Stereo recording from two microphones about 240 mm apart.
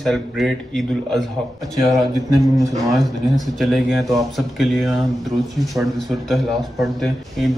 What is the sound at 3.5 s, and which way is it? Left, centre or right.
Speech, centre.